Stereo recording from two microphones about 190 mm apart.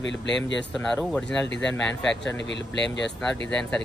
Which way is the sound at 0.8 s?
5° left (ahead or behind).